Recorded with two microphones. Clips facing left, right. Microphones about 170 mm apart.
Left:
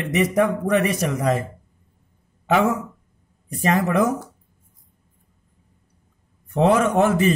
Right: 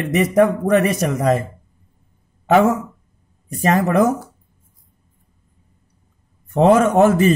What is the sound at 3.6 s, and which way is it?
Speech, 40° right (ahead or behind).